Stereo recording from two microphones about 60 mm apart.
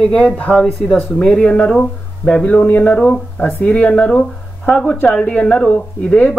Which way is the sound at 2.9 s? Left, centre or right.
Centre.